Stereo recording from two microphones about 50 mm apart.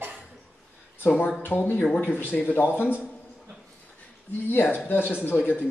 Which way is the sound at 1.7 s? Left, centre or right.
Centre.